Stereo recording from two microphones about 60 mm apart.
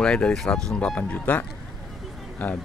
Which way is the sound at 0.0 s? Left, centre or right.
Centre.